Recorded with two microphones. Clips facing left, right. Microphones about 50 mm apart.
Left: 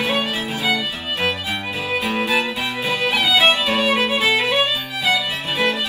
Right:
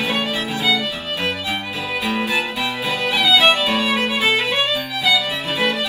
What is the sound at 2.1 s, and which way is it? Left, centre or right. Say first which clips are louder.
Music: even; left.